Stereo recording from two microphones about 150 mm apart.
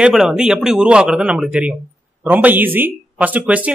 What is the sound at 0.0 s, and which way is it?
Speech, 5° right (ahead or behind).